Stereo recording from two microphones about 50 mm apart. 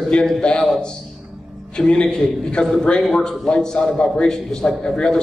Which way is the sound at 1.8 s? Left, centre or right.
Centre.